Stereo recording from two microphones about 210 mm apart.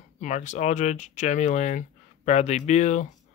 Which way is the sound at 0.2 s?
35° left (ahead or behind).